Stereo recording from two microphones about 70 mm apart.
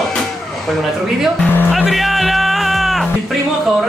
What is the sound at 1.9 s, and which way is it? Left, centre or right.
Music, centre.